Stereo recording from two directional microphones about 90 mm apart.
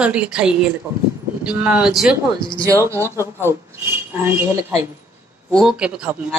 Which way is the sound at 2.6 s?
30° right (ahead or behind).